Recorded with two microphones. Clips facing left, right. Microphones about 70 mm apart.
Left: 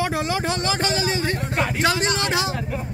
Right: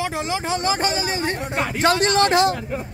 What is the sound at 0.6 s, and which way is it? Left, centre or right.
Speech, right.